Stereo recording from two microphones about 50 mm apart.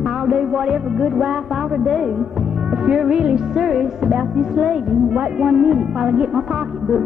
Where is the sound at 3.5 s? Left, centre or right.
Centre.